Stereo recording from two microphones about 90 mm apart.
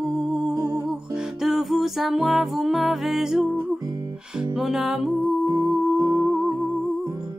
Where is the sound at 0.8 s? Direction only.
5° right (ahead or behind).